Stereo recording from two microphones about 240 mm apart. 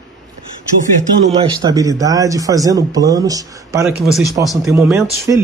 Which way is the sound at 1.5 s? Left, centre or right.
Centre.